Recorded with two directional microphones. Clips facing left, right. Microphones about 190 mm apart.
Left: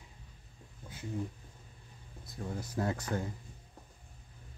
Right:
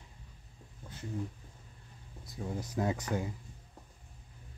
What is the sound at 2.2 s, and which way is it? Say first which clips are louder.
Speech: right 1 dB; 15° right (ahead or behind).